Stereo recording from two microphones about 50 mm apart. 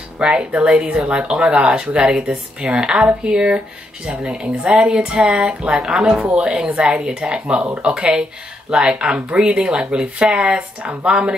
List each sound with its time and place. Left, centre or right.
0.2 s speech: right
5.8 s speech: centre
6.4 s speech: centre